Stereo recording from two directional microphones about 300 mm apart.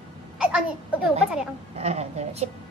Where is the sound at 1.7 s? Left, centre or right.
Right.